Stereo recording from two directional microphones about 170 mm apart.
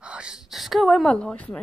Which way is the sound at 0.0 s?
5° right (ahead or behind).